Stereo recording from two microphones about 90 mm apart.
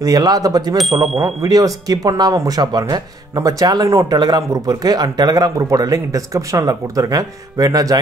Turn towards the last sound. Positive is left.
turn(degrees=-40)  # may be behind; listen again after turning